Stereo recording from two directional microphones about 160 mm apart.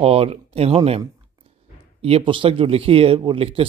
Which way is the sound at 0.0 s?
40° right (ahead or behind).